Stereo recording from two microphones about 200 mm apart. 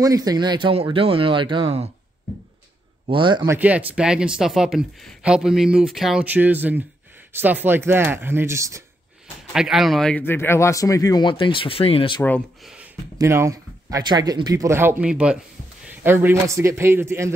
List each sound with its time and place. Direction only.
0.0 s speech: 20° right (ahead or behind)
3.1 s speech: 25° right (ahead or behind)
3.5 s speech: 10° right (ahead or behind)
9.5 s speech: centre (ahead or behind); by 12.2 s 30° left (ahead or behind)
13.2 s speech: 15° right (ahead or behind)